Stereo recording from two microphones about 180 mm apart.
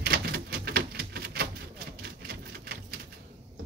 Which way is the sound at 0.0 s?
60° right (ahead or behind).